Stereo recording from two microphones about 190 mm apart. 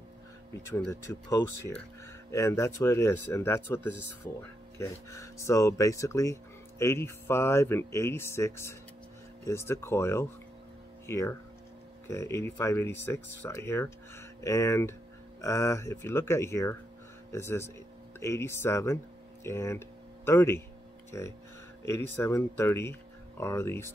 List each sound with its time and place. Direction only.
0.6 s speech: 15° left (ahead or behind)